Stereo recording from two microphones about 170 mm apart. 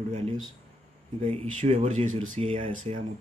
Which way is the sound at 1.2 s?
35° right (ahead or behind).